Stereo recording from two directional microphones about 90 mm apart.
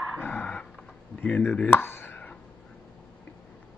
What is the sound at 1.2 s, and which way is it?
Speech, 20° left (ahead or behind).